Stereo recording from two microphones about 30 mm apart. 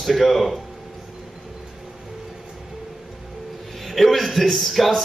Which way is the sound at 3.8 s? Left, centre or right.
Centre.